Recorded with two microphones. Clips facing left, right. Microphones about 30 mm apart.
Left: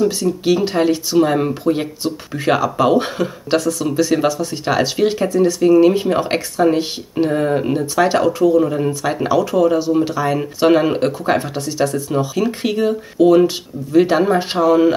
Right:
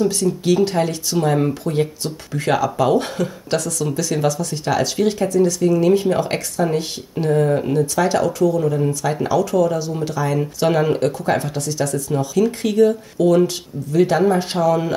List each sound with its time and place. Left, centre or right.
0.0 s speech: centre